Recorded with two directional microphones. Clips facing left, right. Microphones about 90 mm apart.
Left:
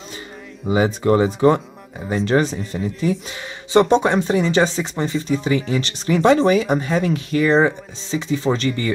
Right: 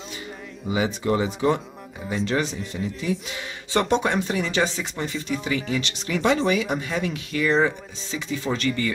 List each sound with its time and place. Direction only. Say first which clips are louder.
0.7 s speech: left 6 dB; 40° left (ahead or behind)
3.7 s speech: left 7 dB; 25° left (ahead or behind)